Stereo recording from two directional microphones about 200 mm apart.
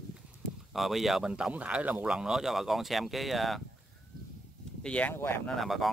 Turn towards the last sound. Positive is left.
turn(degrees=0)  # may be behind; listen again after turning